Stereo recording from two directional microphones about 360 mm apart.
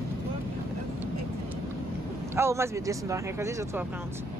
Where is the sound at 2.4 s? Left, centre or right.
Centre.